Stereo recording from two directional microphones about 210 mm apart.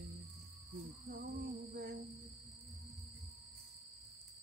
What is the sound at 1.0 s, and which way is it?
Music, 50° right (ahead or behind).